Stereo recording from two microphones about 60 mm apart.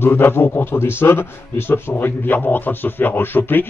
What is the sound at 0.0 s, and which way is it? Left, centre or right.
A man's voice, left.